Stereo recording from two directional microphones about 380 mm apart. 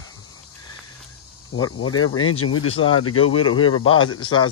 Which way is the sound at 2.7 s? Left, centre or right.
Centre.